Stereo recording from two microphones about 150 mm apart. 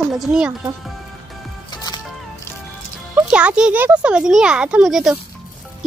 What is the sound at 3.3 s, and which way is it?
Speech, 5° right (ahead or behind).